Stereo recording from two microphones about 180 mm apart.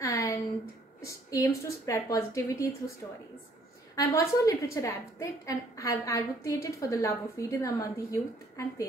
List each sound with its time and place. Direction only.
0.0 s a sound: 15° left (ahead or behind)
1.0 s a woman's voice: 20° left (ahead or behind)
3.9 s a woman's voice: 15° left (ahead or behind)